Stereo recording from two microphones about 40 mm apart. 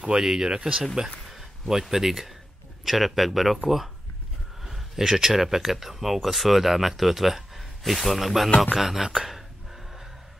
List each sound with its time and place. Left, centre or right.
0.0 s speech: centre
1.2 s speech: centre
9.2 s a sound: centre